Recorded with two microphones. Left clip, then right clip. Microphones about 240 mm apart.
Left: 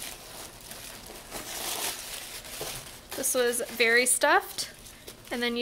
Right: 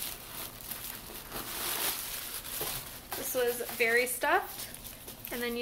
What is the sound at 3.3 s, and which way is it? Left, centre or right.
Speech, left.